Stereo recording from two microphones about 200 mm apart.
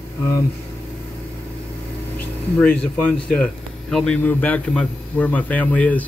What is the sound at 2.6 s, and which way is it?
Speech, 5° left (ahead or behind).